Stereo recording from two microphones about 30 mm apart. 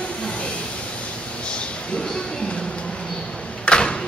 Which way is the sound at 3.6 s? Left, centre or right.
Left.